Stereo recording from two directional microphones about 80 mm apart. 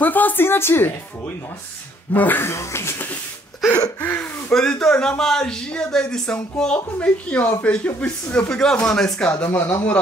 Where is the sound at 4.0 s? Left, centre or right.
Left.